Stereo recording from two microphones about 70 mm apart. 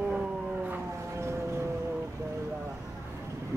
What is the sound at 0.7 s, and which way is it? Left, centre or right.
Siren, right.